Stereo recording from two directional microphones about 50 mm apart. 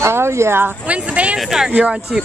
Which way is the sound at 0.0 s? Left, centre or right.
Right.